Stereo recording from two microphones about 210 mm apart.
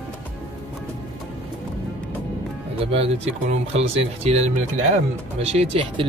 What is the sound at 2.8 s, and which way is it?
Speech, 25° right (ahead or behind).